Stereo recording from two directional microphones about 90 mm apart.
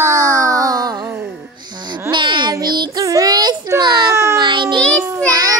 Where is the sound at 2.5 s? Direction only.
55° right (ahead or behind).